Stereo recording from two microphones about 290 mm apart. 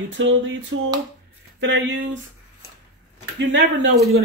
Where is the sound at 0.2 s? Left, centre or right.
Right.